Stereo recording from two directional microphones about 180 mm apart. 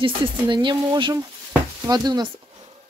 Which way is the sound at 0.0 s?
25° right (ahead or behind).